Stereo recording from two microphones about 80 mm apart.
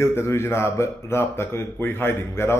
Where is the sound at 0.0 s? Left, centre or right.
Left.